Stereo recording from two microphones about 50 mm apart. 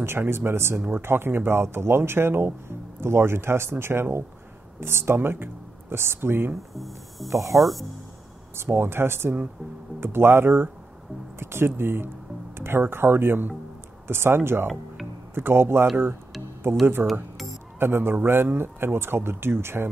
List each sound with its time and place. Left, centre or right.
0.0 s speech: right
6.5 s speech: centre
7.2 s speech: right
7.5 s speech: centre
8.5 s speech: right
12.5 s music: right
12.8 s speech: right
17.0 s music: centre
17.7 s a man's voice: right